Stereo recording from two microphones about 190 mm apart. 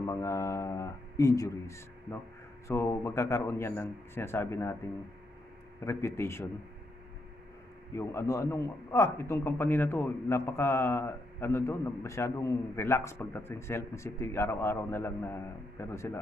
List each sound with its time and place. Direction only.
0.0 s a man's voice: 15° left (ahead or behind)
5.9 s a man's voice: 15° left (ahead or behind)
7.9 s a man's voice: 15° left (ahead or behind)